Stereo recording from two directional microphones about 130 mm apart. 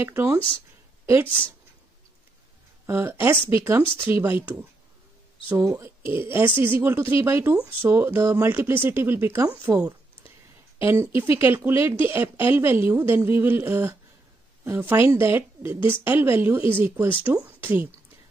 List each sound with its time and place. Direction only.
0.0 s speech: 20° right (ahead or behind)
1.2 s speech: 40° left (ahead or behind)
2.9 s a woman's voice: 20° right (ahead or behind)
5.5 s a woman's voice: 20° right (ahead or behind)